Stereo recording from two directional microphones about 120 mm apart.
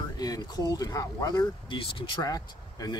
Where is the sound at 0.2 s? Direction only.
30° left (ahead or behind).